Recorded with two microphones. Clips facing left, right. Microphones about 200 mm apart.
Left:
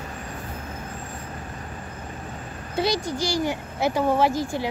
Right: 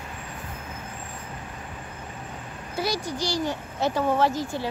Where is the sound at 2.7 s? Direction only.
20° left (ahead or behind).